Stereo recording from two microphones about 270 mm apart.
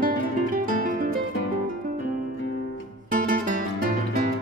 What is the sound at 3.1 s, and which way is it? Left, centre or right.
Music, right.